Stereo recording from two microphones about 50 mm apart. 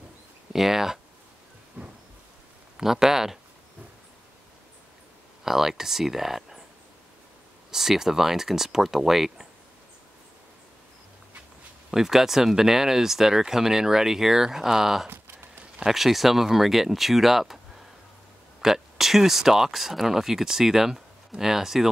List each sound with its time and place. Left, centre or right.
0.5 s speech: centre
1.8 s thunder: right
2.8 s speech: centre
5.4 s speech: centre
7.7 s speech: centre
11.9 s speech: centre
15.0 s a sound: right
15.8 s speech: centre